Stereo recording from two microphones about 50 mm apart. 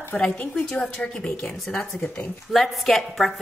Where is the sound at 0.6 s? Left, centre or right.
Centre.